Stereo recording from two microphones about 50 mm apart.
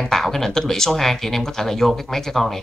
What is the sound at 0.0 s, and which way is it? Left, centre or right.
Speech, centre.